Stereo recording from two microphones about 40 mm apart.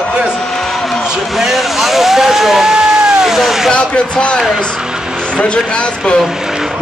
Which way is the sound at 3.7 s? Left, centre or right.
Left.